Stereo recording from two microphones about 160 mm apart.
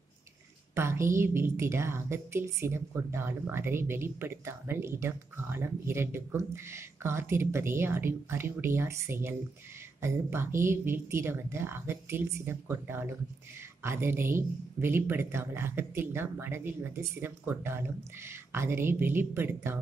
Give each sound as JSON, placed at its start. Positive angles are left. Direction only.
{"t": 0.7, "sound": "a woman's voice", "side_deg": -15}